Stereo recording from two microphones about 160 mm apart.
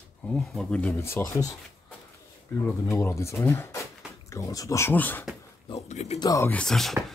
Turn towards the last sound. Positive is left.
turn(degrees=5)  # may be behind; listen again after turning